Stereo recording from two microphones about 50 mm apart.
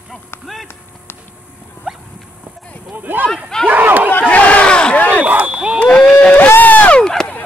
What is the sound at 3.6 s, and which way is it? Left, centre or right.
Battle cry, right.